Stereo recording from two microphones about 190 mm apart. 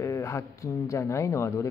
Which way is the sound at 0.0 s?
15° left (ahead or behind).